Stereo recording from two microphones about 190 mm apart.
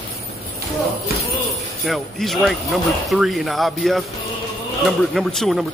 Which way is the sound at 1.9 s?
Centre (ahead or behind).